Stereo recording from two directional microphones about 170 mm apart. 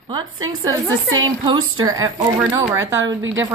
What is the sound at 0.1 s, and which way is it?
A child's voice, 25° right (ahead or behind).